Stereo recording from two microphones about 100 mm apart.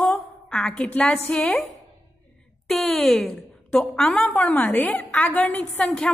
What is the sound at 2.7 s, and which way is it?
A woman's voice, 5° left (ahead or behind).